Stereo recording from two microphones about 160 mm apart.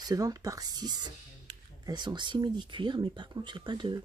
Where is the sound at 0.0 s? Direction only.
25° right (ahead or behind).